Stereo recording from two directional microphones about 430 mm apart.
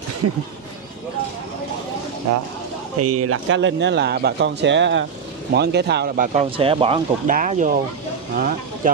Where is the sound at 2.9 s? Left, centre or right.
Right.